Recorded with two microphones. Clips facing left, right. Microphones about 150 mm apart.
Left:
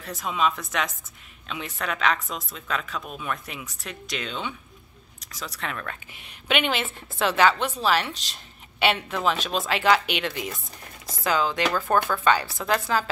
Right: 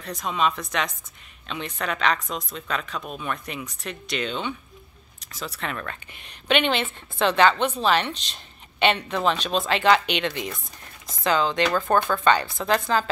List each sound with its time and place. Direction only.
0.0 s speech: 5° left (ahead or behind)